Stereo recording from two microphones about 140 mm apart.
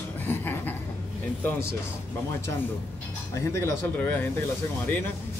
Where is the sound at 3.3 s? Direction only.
20° left (ahead or behind).